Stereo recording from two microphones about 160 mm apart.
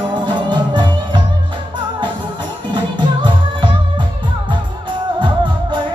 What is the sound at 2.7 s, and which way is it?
Music, 30° right (ahead or behind).